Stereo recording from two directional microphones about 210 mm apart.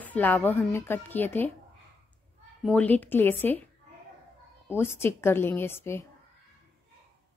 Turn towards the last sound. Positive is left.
turn(degrees=10)  # may be behind; listen again after turning